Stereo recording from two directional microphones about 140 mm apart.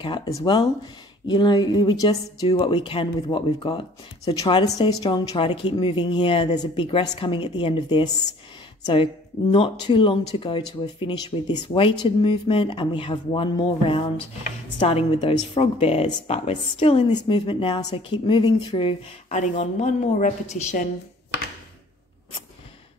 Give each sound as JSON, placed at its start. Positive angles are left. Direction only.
{"t": 0.0, "sound": "speech", "side_deg": 35}
{"t": 4.2, "sound": "a woman's voice", "side_deg": 25}
{"t": 19.6, "sound": "a woman's voice", "side_deg": 60}